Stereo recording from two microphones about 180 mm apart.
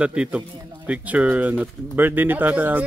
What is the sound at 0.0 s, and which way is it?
Speech, 5° right (ahead or behind).